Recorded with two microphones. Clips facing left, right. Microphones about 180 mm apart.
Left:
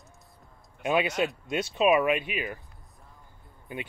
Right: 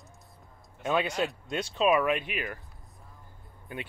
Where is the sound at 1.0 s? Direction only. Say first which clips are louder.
Left 2 dB; centre (ahead or behind).